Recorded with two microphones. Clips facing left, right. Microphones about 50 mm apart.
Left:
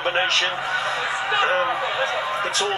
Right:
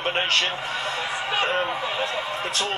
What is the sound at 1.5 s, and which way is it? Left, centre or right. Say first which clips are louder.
Speech: left 4 dB; centre.